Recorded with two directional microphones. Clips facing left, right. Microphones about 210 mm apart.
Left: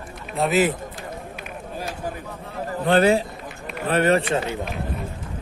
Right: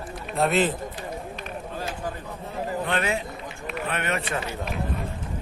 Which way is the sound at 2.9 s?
35° left (ahead or behind).